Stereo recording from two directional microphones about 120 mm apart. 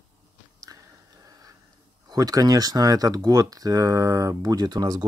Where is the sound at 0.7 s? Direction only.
30° right (ahead or behind).